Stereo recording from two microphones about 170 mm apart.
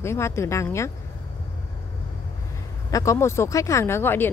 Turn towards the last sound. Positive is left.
turn(degrees=15)  # may be behind; listen again after turning